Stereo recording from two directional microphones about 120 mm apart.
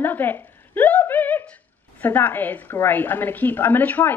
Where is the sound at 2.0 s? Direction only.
15° left (ahead or behind).